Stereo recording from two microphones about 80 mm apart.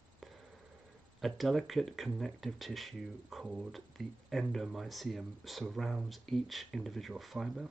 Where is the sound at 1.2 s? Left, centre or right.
Centre.